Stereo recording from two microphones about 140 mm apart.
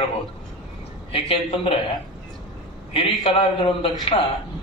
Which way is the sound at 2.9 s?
40° left (ahead or behind).